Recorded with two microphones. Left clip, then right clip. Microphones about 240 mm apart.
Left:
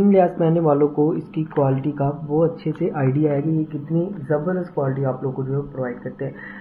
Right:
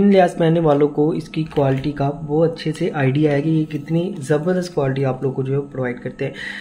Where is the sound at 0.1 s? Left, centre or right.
Right.